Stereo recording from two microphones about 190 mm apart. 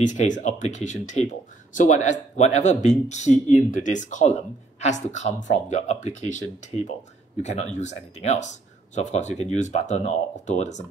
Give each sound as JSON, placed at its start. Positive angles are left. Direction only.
{"t": 0.0, "sound": "speech", "side_deg": 40}